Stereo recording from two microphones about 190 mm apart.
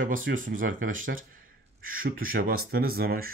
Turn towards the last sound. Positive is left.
turn(degrees=-50)  # may be behind; listen again after turning